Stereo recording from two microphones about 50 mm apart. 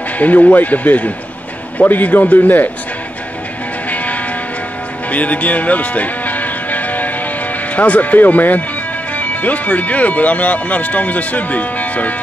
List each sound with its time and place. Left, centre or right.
0.2 s speech: left
3.9 s a sound: left
5.1 s music: left
7.7 s speech: left